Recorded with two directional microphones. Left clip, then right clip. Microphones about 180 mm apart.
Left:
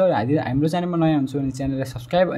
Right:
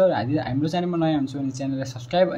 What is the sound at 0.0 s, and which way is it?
Speech, 30° left (ahead or behind).